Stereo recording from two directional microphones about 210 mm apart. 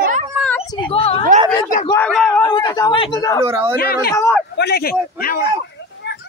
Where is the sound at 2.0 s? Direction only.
5° left (ahead or behind).